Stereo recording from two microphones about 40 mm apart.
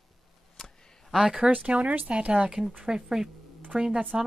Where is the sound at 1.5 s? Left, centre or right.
Right.